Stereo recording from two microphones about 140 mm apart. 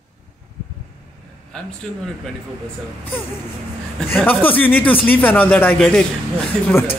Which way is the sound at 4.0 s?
5° left (ahead or behind).